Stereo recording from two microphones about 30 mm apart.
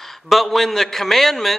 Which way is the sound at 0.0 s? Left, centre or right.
Centre.